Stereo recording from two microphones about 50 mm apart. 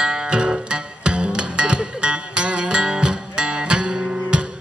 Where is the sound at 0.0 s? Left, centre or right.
Centre.